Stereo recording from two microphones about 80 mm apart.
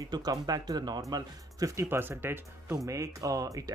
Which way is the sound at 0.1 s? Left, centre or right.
Right.